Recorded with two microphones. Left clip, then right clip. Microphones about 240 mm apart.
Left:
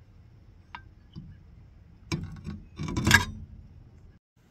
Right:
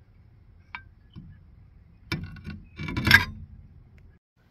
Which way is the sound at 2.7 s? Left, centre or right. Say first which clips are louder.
Right 4 dB; centre.